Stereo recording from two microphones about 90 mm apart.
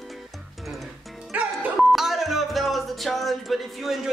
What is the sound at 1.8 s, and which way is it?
Music, 5° right (ahead or behind).